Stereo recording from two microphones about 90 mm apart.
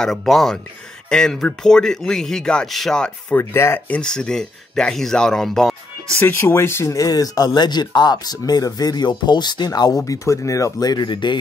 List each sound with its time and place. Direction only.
0.0 s speech: 5° left (ahead or behind)
3.3 s speech: 25° left (ahead or behind)
3.9 s speech: 10° left (ahead or behind)
6.2 s speech: 30° left (ahead or behind); by 11.3 s 60° left (ahead or behind)